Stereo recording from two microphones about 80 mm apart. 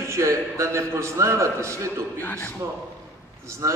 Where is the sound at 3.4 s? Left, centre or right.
Right.